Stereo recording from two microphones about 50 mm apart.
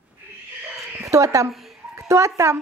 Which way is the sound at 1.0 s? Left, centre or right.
Right.